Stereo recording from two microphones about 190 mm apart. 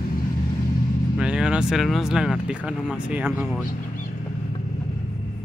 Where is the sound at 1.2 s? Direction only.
5° right (ahead or behind).